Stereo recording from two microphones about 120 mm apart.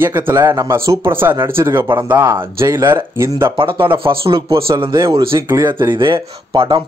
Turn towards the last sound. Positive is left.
turn(degrees=-45)  # may be behind; listen again after turning